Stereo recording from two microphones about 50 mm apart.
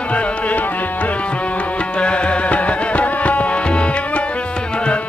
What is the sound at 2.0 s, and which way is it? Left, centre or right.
Music, left.